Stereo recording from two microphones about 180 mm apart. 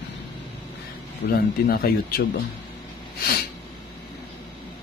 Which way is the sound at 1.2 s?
60° left (ahead or behind).